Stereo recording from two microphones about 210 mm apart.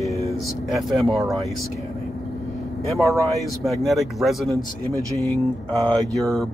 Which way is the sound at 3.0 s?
15° right (ahead or behind).